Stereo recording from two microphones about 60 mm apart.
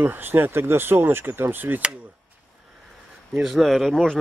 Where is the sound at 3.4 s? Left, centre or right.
Centre.